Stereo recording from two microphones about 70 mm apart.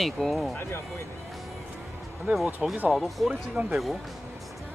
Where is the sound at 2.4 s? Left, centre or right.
Centre.